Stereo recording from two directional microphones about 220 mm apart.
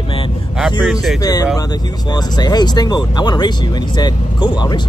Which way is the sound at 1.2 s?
15° left (ahead or behind).